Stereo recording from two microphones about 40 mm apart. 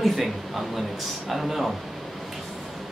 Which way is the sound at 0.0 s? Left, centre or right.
Centre.